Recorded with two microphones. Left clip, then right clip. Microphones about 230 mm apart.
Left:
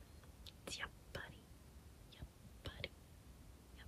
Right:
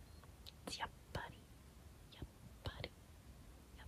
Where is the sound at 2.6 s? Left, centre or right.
Centre.